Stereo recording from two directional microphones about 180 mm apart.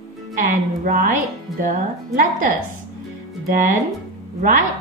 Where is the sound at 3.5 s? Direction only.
45° right (ahead or behind).